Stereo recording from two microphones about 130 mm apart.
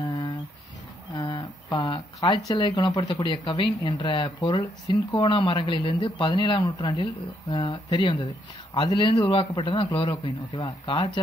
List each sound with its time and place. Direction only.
1.1 s speech: 35° left (ahead or behind)